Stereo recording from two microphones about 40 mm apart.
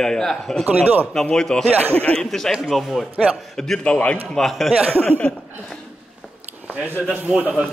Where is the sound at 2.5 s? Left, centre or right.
Centre.